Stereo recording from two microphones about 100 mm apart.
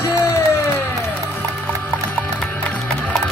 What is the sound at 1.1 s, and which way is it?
Music, 15° left (ahead or behind).